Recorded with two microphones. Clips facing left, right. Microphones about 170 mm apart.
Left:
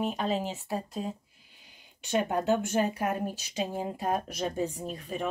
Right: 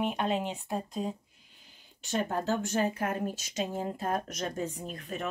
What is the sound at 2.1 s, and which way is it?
A woman's voice, 15° left (ahead or behind).